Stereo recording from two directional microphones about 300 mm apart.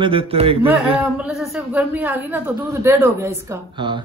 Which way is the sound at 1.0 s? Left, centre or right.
Centre.